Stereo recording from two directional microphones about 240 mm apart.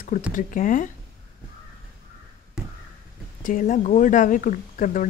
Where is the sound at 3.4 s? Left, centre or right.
Left.